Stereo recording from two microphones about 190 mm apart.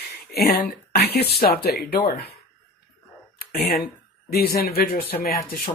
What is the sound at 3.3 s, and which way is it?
Speech, 55° left (ahead or behind).